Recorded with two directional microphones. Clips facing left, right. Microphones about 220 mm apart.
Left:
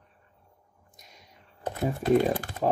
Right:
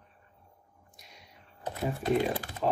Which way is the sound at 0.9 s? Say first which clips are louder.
Left 1 dB; 45° left (ahead or behind).